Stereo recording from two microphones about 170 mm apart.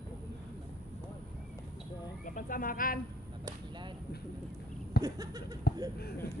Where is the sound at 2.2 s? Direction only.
55° left (ahead or behind).